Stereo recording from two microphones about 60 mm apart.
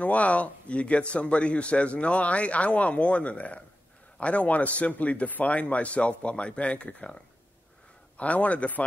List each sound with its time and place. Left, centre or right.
0.0 s speech: left
8.2 s speech: left